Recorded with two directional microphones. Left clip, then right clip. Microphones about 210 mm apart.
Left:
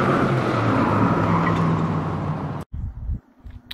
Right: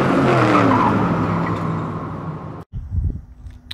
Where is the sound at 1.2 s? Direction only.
Centre (ahead or behind).